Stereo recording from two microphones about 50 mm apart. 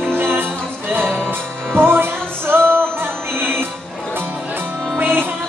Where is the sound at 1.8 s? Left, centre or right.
Right.